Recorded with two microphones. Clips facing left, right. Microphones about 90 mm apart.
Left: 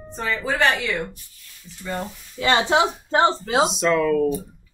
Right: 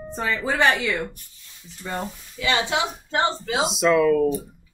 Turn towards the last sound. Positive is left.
turn(degrees=0)  # may be behind; listen again after turning